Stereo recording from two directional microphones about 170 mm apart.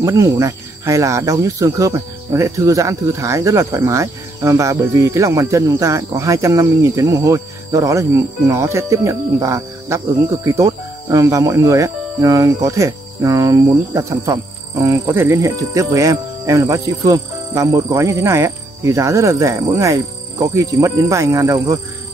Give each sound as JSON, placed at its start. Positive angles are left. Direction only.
{"t": 0.0, "sound": "speech", "side_deg": -20}